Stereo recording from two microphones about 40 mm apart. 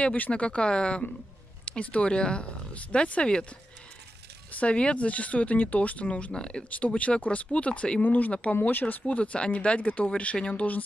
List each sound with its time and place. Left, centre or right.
0.0 s speech: left
0.3 s speech: left
4.5 s speech: left
6.3 s speech: left
8.0 s speech: left